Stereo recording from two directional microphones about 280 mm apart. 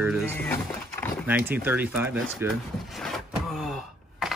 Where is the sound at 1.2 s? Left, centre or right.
Centre.